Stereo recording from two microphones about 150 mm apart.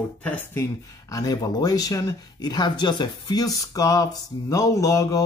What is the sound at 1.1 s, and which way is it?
Speech, 25° left (ahead or behind).